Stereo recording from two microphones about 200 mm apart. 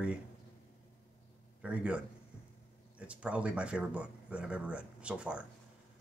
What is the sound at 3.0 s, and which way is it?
Speech, 5° right (ahead or behind).